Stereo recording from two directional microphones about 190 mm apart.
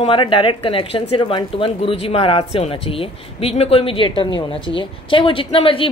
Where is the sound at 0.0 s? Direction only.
25° left (ahead or behind).